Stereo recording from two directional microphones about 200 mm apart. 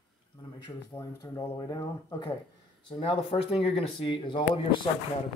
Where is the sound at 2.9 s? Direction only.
30° left (ahead or behind).